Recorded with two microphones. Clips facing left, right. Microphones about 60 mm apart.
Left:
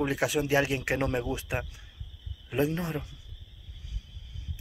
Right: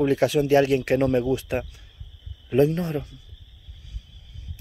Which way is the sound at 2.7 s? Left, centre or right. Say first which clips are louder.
Right 5 dB; centre.